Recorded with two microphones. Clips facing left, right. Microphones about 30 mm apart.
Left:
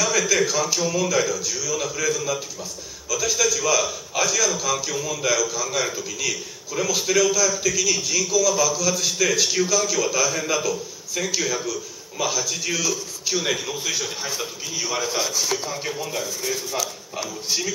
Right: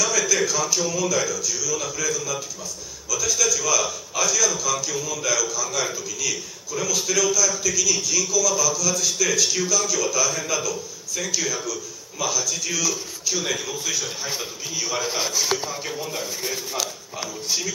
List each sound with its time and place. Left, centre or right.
0.5 s a man's voice: left; by 15.0 s centre
15.0 s a man's voice: centre
15.5 s speech: centre